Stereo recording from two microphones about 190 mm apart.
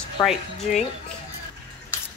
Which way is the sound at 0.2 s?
20° left (ahead or behind).